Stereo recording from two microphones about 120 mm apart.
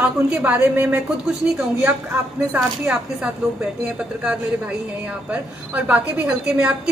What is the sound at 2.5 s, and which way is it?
A woman's voice, 5° right (ahead or behind).